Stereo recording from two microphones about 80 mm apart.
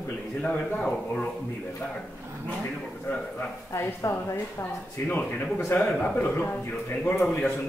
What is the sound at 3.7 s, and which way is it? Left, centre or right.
A man's voice, left.